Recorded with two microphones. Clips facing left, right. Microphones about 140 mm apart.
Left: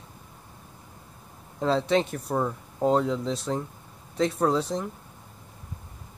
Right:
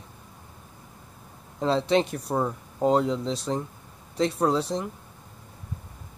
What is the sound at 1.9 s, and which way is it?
Speech, centre (ahead or behind).